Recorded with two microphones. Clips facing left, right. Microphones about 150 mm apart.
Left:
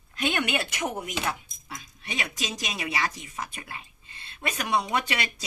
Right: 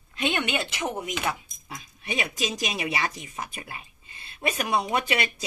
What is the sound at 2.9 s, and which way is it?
Speech, 25° right (ahead or behind).